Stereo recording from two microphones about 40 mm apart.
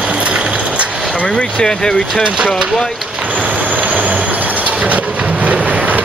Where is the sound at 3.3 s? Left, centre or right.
Right.